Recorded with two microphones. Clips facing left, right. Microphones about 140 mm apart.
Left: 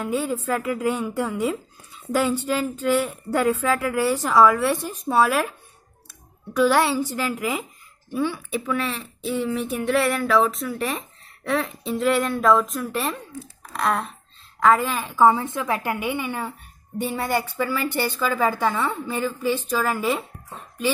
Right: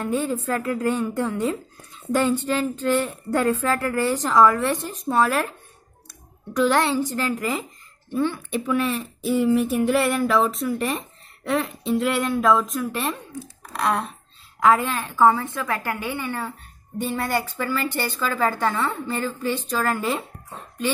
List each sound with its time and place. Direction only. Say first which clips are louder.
0.0 s a woman's voice: right 1 dB; 10° left (ahead or behind)
6.6 s a woman's voice: left 1 dB; 10° left (ahead or behind)
15.0 s a woman's voice: left 1 dB; 15° left (ahead or behind)